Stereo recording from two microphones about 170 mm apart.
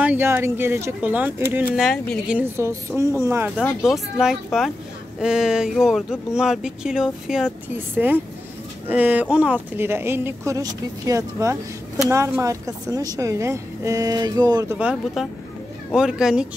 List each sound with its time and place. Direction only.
0.0 s speech: 10° right (ahead or behind)
1.8 s speech: centre (ahead or behind); by 3.4 s 15° right (ahead or behind)
3.8 s a woman's voice: 5° right (ahead or behind); by 14.8 s 20° right (ahead or behind)
14.8 s speech: 10° right (ahead or behind)